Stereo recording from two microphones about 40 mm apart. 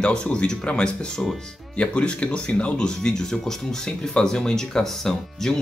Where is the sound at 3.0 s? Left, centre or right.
Centre.